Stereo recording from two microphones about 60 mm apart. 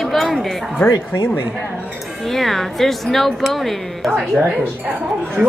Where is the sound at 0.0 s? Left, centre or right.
Centre.